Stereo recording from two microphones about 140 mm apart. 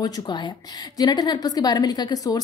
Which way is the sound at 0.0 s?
30° left (ahead or behind).